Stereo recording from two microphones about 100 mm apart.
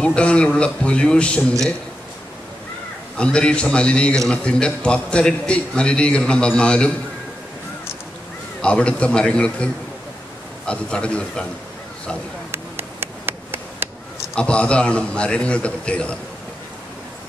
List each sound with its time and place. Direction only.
0.0 s a man's voice: 10° left (ahead or behind)
3.2 s a man's voice: 10° left (ahead or behind)
8.5 s a man's voice: 10° left (ahead or behind)
12.4 s a sound: 25° right (ahead or behind)
14.3 s a man's voice: 10° left (ahead or behind)